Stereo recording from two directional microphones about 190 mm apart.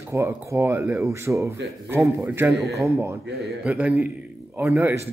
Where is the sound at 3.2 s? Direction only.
55° right (ahead or behind).